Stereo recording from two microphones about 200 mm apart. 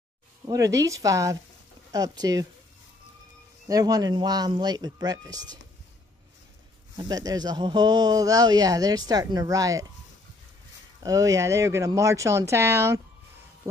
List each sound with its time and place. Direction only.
0.5 s speech: 15° right (ahead or behind)
3.6 s speech: 20° right (ahead or behind)
7.0 s speech: 20° right (ahead or behind)
11.0 s speech: 15° right (ahead or behind)